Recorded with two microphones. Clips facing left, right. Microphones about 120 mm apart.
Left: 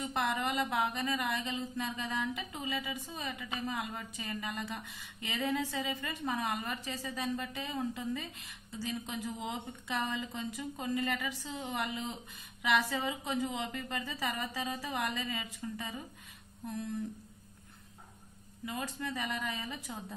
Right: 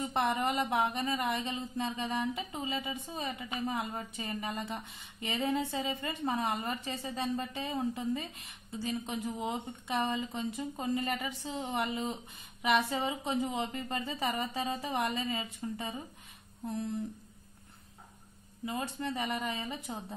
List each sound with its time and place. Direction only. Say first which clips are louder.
0.0 s a woman's voice: right 3 dB; 25° right (ahead or behind)
18.7 s a woman's voice: right 3 dB; 20° right (ahead or behind)